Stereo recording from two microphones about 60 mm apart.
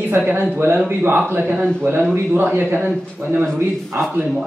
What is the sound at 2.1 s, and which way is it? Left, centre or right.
A man's voice, right.